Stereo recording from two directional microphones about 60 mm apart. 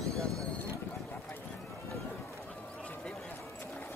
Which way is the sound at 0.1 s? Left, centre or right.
Right.